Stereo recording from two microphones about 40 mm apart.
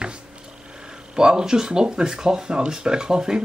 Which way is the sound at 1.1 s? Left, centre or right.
Centre.